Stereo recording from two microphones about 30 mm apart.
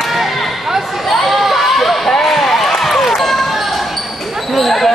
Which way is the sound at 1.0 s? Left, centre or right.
Centre.